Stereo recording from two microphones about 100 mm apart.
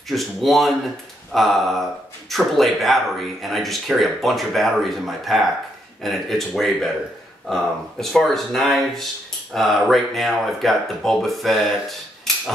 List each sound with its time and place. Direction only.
0.1 s speech: centre (ahead or behind)
12.3 s typewriter: 5° left (ahead or behind)